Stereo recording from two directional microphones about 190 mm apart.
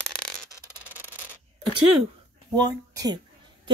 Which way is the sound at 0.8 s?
10° right (ahead or behind).